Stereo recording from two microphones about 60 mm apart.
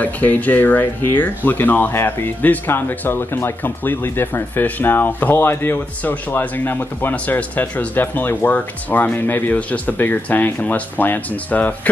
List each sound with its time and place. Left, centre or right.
0.0 s speech: left
1.9 s speech: left